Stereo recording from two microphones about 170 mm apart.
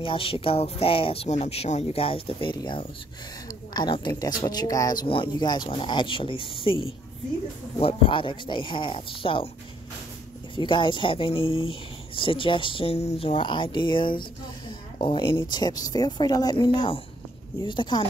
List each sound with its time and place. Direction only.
0.0 s speech: 30° left (ahead or behind)
10.5 s speech: 30° left (ahead or behind)